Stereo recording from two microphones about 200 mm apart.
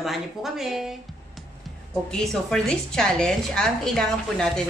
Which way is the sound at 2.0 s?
5° left (ahead or behind).